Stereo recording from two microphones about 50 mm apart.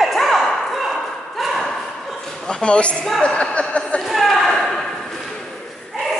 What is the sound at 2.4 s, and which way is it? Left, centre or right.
A man's voice, centre.